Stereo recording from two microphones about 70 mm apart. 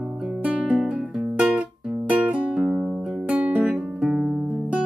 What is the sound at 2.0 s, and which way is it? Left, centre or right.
Music, right.